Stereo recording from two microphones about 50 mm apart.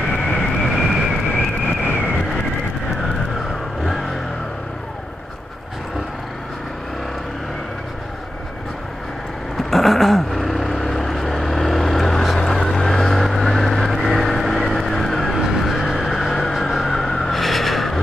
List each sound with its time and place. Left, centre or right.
0.3 s vehicle: centre
1.3 s vehicle: left
3.8 s vehicle: centre
9.6 s vehicle: centre